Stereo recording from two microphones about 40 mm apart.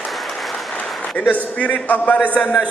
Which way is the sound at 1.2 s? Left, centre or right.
Left.